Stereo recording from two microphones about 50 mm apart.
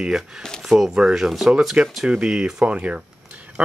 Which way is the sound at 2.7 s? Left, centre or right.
Right.